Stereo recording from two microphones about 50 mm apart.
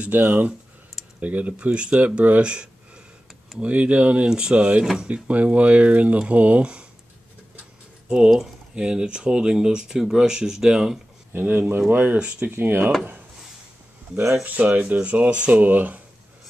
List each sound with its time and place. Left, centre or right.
0.1 s speech: right
1.2 s speech: right
8.7 s speech: centre
11.3 s speech: right
12.2 s speech: right
12.5 s speech: right
14.3 s speech: right
15.5 s speech: right